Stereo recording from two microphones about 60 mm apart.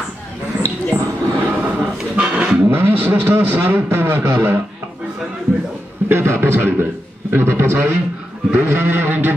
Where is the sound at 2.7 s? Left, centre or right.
Right.